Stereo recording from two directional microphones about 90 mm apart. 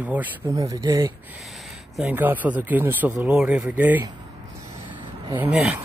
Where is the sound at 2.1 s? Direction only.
20° right (ahead or behind).